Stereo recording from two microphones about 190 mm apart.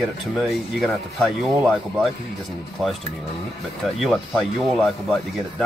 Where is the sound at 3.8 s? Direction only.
Centre (ahead or behind).